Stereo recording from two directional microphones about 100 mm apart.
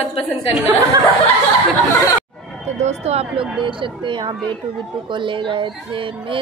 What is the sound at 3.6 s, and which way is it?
Speech, 55° right (ahead or behind).